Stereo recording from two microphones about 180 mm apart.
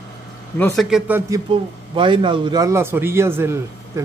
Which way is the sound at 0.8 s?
5° right (ahead or behind).